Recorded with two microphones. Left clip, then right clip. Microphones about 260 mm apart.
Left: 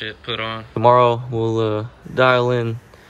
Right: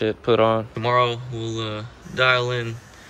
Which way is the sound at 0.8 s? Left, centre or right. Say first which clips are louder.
Left 7 dB; centre.